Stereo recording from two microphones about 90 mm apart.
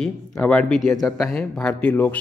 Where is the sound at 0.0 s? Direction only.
10° left (ahead or behind).